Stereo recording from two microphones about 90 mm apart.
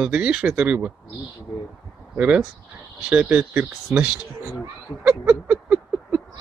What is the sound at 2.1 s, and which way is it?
Speech, 15° right (ahead or behind).